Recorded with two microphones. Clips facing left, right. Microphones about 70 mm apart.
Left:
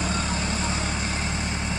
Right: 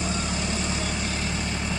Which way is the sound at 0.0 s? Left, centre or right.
Left.